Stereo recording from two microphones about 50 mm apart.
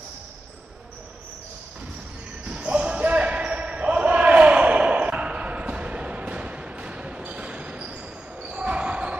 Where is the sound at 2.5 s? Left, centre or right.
Right.